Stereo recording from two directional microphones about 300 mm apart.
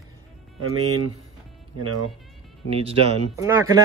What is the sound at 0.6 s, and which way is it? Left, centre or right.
Speech, right.